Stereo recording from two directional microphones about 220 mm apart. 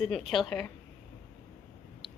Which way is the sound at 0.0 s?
Centre (ahead or behind).